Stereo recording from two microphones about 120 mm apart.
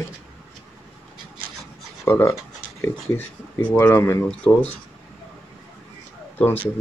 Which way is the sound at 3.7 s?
25° left (ahead or behind).